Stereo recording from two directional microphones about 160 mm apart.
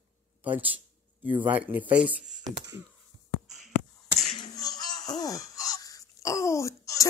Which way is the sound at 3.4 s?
Centre (ahead or behind).